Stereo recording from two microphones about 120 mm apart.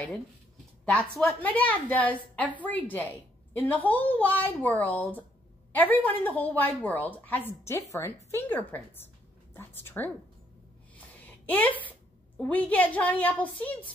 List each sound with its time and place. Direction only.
0.8 s a woman's voice: 10° left (ahead or behind)
11.4 s a woman's voice: 15° left (ahead or behind)